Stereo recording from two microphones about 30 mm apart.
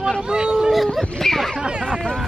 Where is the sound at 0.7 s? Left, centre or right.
Centre.